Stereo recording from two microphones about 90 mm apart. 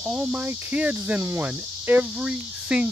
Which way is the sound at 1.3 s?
20° right (ahead or behind).